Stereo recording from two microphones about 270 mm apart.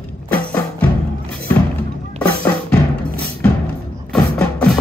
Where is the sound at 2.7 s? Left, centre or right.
Centre.